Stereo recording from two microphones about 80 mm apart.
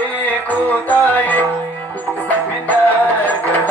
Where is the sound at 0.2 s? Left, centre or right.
Left.